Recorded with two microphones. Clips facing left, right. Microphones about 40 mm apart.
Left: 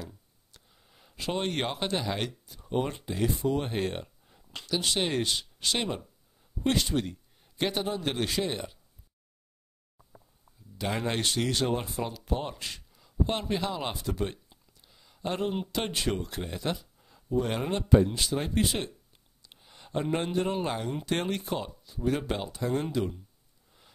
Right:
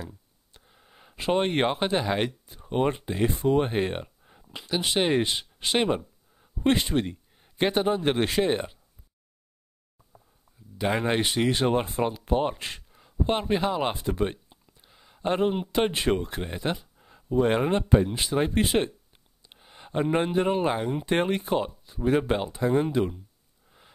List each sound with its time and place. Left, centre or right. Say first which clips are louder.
0.0 s a sound: right 3 dB; right
4.6 s a man's voice: right 4 dB; right
10.8 s speech: right 5 dB; right